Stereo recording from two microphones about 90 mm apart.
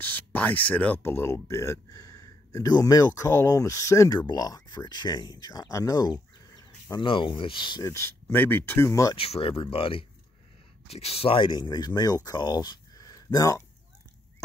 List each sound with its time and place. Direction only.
0.0 s speech: 20° left (ahead or behind); by 6.1 s 40° left (ahead or behind)
6.5 s speech: 55° left (ahead or behind)
7.8 s speech: 30° left (ahead or behind)
9.1 s speech: 90° left; by 13.7 s 40° left (ahead or behind)